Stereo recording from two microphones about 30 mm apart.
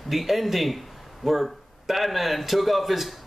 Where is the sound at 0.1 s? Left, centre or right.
Centre.